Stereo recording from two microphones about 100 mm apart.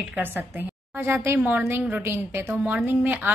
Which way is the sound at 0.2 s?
20° right (ahead or behind).